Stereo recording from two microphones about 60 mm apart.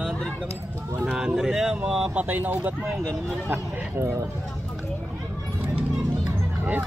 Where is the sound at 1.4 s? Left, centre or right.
Centre.